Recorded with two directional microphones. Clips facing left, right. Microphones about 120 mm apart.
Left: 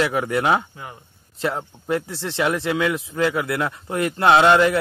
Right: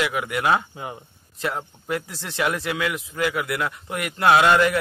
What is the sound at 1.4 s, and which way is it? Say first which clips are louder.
A man's voice: left 3 dB; 25° left (ahead or behind).